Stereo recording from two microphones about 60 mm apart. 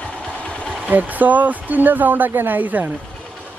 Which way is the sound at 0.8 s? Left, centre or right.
Right.